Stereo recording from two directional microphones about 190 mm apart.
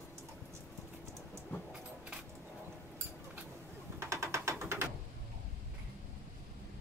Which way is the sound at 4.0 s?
15° right (ahead or behind).